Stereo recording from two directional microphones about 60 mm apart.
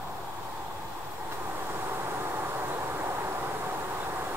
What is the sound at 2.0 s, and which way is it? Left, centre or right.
Vehicle, right.